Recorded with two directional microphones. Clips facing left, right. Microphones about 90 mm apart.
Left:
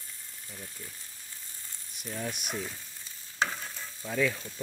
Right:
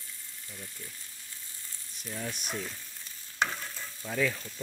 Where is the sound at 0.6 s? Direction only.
20° left (ahead or behind).